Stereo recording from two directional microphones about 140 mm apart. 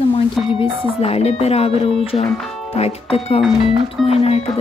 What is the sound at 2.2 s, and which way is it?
Speech, 5° left (ahead or behind).